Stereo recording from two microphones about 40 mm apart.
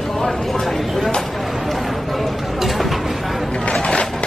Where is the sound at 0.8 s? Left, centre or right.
Centre.